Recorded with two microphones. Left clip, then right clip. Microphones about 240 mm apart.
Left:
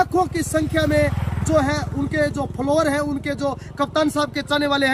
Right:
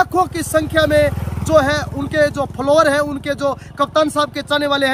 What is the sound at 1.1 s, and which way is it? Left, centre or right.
Vehicle, right.